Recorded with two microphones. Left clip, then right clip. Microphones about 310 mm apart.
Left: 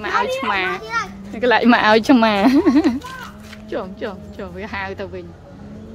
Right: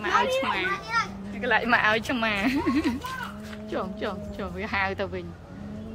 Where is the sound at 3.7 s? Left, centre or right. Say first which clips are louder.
Left 5 dB; centre.